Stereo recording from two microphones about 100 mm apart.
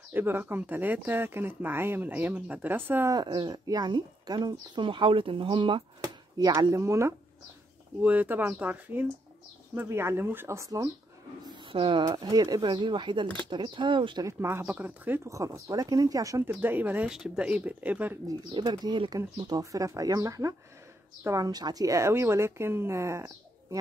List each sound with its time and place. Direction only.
0.1 s speech: 20° right (ahead or behind)
3.1 s speech: 45° right (ahead or behind)
6.3 s speech: 40° right (ahead or behind)
8.0 s speech: 15° right (ahead or behind); by 10.9 s 35° right (ahead or behind)
11.7 s speech: 55° right (ahead or behind)
12.1 s speech: 40° right (ahead or behind)
14.2 s speech: 25° right (ahead or behind)
15.2 s speech: 30° right (ahead or behind); by 18.1 s 15° right (ahead or behind)
18.5 s speech: 50° right (ahead or behind); by 23.8 s 30° right (ahead or behind)